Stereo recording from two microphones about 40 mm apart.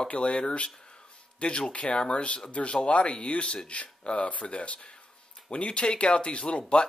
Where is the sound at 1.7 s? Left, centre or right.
Left.